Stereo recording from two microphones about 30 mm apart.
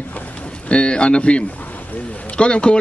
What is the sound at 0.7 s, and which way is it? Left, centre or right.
Speech, left.